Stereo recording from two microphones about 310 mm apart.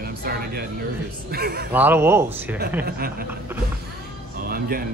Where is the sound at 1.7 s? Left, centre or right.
Centre.